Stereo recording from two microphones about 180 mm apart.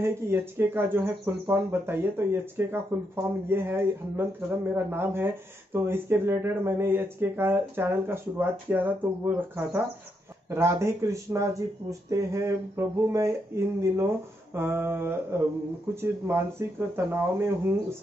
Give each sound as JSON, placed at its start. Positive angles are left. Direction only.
{"t": 0.0, "sound": "speech", "side_deg": -15}